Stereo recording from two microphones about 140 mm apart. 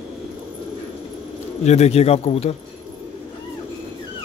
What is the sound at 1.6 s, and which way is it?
Speech, 50° left (ahead or behind).